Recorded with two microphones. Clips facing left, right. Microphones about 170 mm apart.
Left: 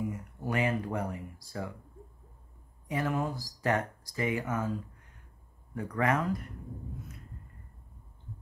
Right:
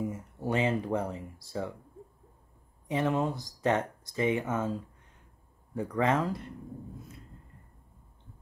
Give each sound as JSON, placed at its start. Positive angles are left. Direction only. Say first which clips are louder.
{"t": 0.1, "sound": "speech", "louder": "right 2 dB", "side_deg": -25}
{"t": 2.9, "sound": "speech", "louder": "right 3 dB", "side_deg": -25}
{"t": 5.8, "sound": "speech", "louder": "right 2 dB", "side_deg": -25}